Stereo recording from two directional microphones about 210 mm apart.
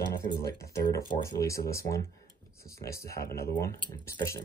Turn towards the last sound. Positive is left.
turn(degrees=15)  # may be behind; listen again after turning